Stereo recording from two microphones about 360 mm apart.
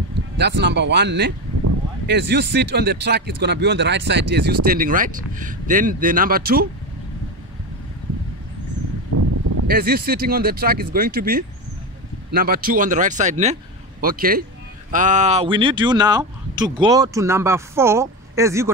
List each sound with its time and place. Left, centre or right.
0.4 s speech: right
9.1 s a sound: right
9.7 s speech: right; by 18.7 s centre